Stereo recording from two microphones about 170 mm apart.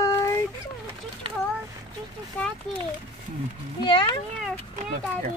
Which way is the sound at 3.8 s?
30° left (ahead or behind).